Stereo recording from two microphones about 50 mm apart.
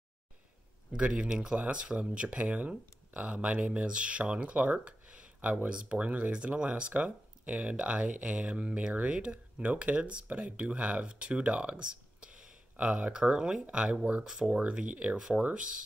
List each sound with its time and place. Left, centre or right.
0.9 s speech: right
13.1 s speech: centre
14.6 s speech: right
15.1 s speech: centre